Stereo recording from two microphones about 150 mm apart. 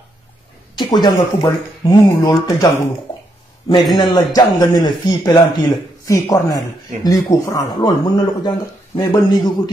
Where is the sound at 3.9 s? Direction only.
30° left (ahead or behind).